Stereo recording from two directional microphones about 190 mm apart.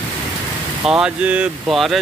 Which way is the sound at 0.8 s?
5° right (ahead or behind).